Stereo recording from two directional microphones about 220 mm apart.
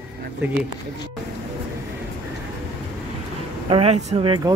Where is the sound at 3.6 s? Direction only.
25° right (ahead or behind).